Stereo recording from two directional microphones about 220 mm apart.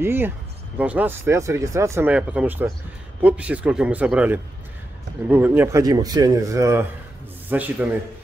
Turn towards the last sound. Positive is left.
turn(degrees=-10)  # may be behind; listen again after turning